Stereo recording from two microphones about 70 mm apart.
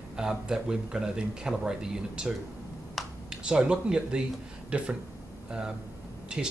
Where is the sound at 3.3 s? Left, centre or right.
Centre.